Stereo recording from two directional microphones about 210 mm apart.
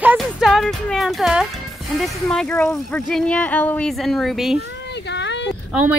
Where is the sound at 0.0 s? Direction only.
5° right (ahead or behind).